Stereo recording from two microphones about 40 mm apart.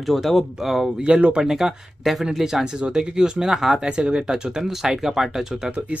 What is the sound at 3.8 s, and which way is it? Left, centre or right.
Speech, right.